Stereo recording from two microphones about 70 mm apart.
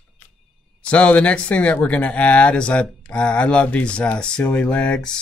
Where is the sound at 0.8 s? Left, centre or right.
Centre.